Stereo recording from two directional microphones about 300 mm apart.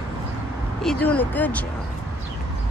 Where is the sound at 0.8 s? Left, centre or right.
Centre.